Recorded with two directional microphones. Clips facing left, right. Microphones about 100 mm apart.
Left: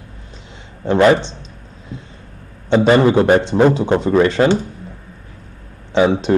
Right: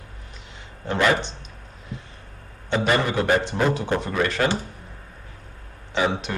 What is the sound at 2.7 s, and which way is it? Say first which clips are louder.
A man's voice: left 10 dB; 30° left (ahead or behind).